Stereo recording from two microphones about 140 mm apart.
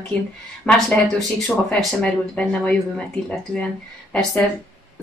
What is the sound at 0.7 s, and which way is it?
Speech, 10° left (ahead or behind).